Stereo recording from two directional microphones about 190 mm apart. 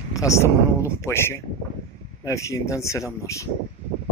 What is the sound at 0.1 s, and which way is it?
Speech, 15° left (ahead or behind).